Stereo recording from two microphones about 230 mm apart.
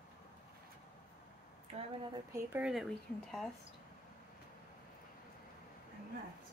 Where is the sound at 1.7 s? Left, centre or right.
Right.